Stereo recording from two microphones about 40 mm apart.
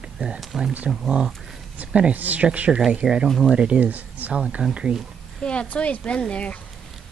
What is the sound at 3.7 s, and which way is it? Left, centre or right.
Speech, right.